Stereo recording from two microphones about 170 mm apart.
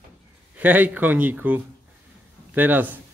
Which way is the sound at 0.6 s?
10° right (ahead or behind).